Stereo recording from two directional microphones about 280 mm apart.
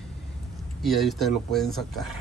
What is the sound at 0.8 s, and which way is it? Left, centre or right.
Speech, centre.